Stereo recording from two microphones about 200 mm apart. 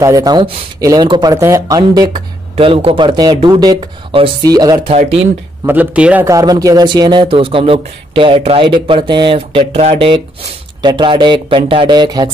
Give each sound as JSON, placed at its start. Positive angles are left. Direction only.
{"t": 0.0, "sound": "speech", "side_deg": -15}
{"t": 5.7, "sound": "speech", "side_deg": -5}